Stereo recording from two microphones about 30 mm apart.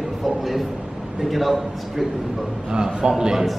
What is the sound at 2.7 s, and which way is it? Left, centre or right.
Speech, right.